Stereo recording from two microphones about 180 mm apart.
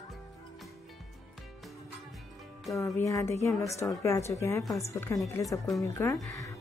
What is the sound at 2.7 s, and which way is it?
Speech, 15° left (ahead or behind).